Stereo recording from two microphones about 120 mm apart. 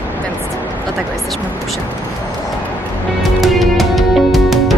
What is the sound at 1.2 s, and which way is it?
Speech, centre (ahead or behind).